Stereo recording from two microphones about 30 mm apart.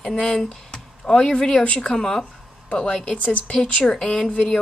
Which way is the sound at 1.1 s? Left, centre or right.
Left.